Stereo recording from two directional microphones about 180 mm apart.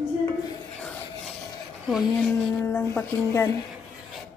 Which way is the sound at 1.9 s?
Centre (ahead or behind).